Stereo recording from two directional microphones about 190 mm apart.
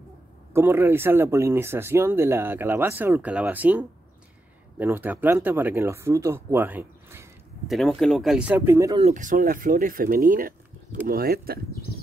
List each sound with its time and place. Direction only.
0.5 s speech: 10° right (ahead or behind)
7.6 s speech: centre (ahead or behind)
9.1 s speech: 45° right (ahead or behind)